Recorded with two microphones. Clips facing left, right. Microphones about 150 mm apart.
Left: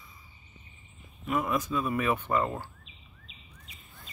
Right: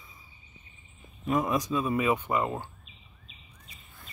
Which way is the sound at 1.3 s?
25° right (ahead or behind).